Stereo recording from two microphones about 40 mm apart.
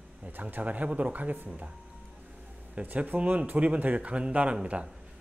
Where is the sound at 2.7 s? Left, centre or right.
Right.